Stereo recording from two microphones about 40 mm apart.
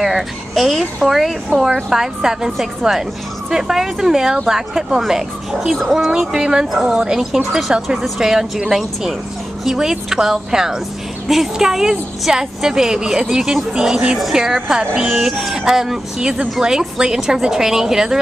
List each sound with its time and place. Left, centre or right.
0.0 s a sound: centre
1.0 s speech: centre
1.9 s a woman's voice: centre
13.4 s speech: centre
13.7 s a woman's voice: centre